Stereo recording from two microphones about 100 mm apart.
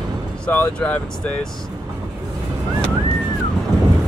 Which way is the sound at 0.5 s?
20° left (ahead or behind).